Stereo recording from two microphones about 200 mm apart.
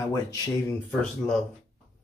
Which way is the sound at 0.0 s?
15° left (ahead or behind).